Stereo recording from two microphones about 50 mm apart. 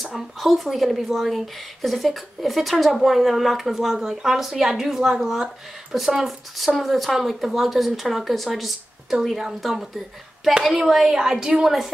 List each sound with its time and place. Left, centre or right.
0.0 s speech: centre